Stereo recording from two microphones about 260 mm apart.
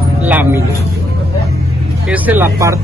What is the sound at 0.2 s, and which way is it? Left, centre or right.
Vehicle, centre.